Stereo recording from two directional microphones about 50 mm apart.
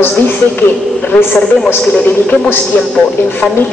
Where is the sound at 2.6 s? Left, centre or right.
Left.